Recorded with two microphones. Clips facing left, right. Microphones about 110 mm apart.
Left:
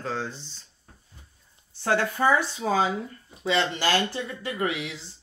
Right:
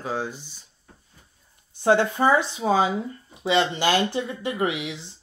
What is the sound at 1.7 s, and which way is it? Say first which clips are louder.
Speech: right 5 dB; 20° right (ahead or behind).